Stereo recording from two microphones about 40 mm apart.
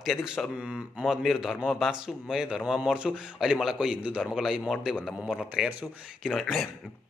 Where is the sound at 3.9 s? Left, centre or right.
Right.